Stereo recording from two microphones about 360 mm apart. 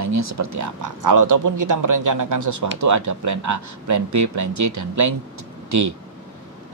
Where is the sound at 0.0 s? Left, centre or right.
Right.